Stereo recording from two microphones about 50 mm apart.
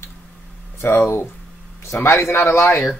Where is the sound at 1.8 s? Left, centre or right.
Left.